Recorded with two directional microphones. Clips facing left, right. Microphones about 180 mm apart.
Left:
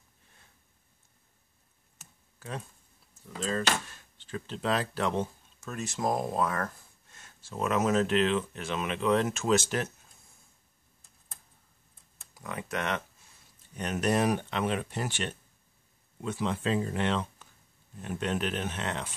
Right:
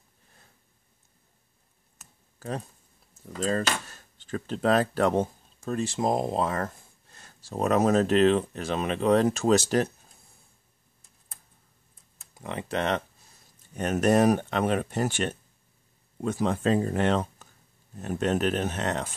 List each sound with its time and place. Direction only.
2.3 s a sound: 40° right (ahead or behind)
3.3 s speech: 40° right (ahead or behind)
5.7 s speech: 30° right (ahead or behind)
12.4 s speech: 30° right (ahead or behind)
13.7 s speech: 45° right (ahead or behind)